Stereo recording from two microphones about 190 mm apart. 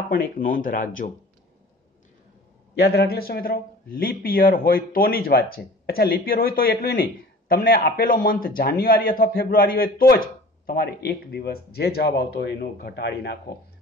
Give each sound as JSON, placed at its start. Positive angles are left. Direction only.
{"t": 0.1, "sound": "a man's voice", "side_deg": 50}
{"t": 2.8, "sound": "a man's voice", "side_deg": 55}